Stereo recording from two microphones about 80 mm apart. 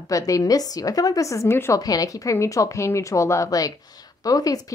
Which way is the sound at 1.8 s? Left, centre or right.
Left.